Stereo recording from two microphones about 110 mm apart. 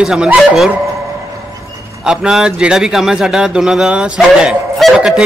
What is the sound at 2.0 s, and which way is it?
A man's voice, 5° right (ahead or behind).